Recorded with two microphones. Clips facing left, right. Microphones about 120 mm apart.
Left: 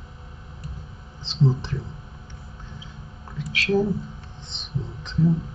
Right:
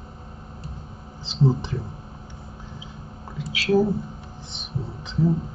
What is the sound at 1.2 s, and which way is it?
Speech, 10° right (ahead or behind).